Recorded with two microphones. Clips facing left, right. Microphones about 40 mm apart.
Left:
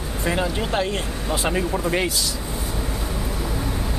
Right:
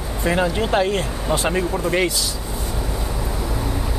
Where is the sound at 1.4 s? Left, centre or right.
Centre.